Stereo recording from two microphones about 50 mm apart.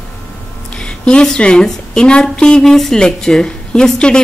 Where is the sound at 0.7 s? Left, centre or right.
Centre.